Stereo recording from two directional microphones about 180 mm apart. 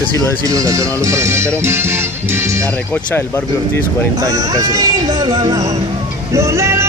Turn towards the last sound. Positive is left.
turn(degrees=-15)  # may be behind; listen again after turning